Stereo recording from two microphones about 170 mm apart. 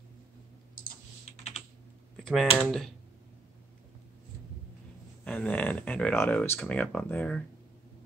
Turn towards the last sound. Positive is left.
turn(degrees=5)  # may be behind; listen again after turning